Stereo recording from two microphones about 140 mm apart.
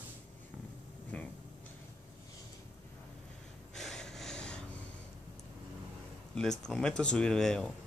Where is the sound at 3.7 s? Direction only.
5° left (ahead or behind).